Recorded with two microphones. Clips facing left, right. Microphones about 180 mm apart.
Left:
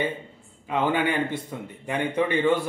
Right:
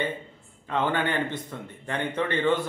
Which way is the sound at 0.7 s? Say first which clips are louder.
Left 2 dB; 10° left (ahead or behind).